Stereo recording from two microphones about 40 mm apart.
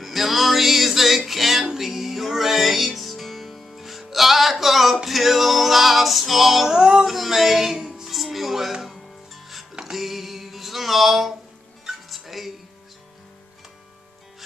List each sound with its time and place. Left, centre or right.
0.0 s music: centre
6.7 s music: centre
8.1 s music: centre
9.8 s a sound: centre
12.1 s music: centre